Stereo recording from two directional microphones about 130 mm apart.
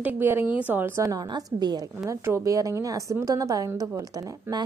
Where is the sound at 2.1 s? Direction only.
20° right (ahead or behind).